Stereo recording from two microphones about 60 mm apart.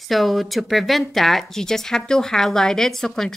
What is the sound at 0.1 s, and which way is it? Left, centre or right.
Speech, centre.